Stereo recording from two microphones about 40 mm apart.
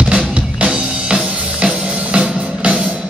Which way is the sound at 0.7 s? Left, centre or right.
Centre.